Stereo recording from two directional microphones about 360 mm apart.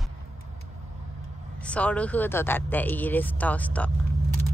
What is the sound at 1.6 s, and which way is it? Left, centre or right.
Speech, centre.